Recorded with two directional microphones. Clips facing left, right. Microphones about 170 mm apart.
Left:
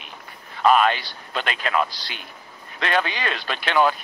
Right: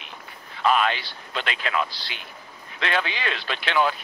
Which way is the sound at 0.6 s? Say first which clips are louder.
Left 4 dB; 45° left (ahead or behind).